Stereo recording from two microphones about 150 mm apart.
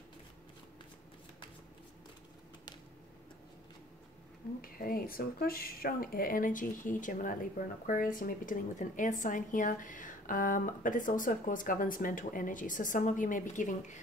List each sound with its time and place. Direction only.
4.6 s speech: 75° left (ahead or behind); by 13.9 s 55° left (ahead or behind)